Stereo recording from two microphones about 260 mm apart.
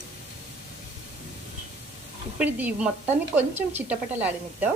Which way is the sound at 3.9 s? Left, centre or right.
Centre.